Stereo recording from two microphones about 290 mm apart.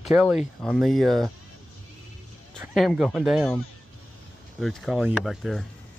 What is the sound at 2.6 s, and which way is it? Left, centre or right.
Speech, centre.